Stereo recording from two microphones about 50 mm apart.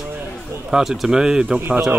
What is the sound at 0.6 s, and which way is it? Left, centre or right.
Speech, centre.